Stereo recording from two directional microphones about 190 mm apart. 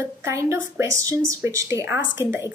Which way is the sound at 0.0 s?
15° right (ahead or behind).